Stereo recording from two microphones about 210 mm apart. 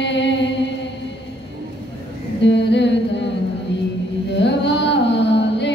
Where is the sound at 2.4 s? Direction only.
55° left (ahead or behind).